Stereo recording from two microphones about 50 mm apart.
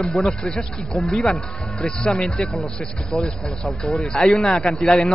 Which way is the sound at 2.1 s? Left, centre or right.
Centre.